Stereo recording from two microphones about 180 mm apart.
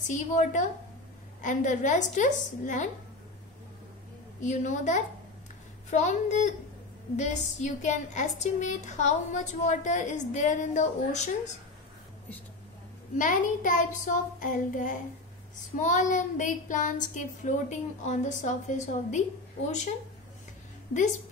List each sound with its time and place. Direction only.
0.0 s speech: 40° left (ahead or behind)
4.4 s a woman's voice: 40° left (ahead or behind)
13.1 s speech: 45° left (ahead or behind)